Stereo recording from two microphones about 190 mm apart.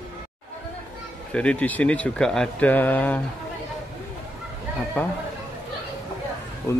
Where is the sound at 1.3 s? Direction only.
5° left (ahead or behind).